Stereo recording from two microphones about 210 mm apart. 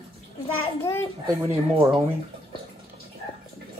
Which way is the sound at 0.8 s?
15° left (ahead or behind).